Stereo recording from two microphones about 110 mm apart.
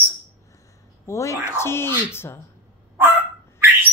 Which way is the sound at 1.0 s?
25° left (ahead or behind).